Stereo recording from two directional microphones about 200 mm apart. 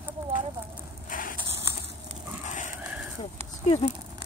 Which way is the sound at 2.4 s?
40° left (ahead or behind).